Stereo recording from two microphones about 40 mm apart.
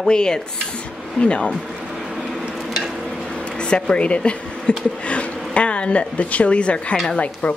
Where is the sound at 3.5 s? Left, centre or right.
Left.